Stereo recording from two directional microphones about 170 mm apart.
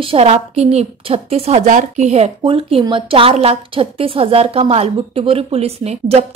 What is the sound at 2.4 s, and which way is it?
A woman's voice, 30° right (ahead or behind).